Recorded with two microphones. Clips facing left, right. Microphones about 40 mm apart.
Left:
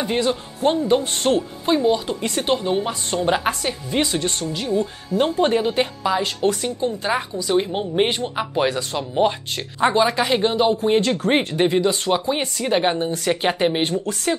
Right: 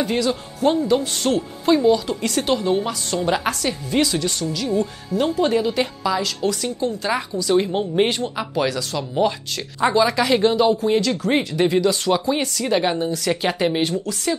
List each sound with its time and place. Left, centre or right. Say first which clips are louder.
0.0 s a man's voice: even; left
1.7 s speech: right 2 dB; left
4.1 s a man's voice: even; left
5.5 s a man's voice: even; left
6.9 s speech: even; left
10.9 s a man's voice: left 1 dB; left
11.6 s a man's voice: right 1 dB; left